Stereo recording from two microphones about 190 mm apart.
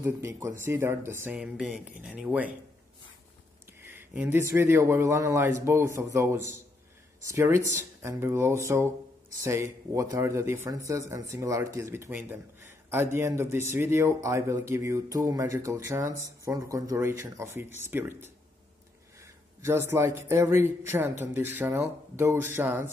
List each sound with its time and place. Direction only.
0.0 s speech: 15° right (ahead or behind)
3.8 s speech: 10° right (ahead or behind)